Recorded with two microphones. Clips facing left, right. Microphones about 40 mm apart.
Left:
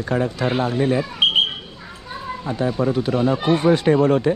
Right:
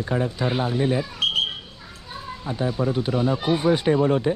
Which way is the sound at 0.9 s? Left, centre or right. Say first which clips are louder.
Left 5 dB; left.